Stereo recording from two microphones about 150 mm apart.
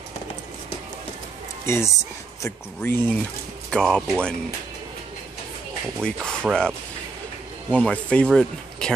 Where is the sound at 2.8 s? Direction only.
15° left (ahead or behind).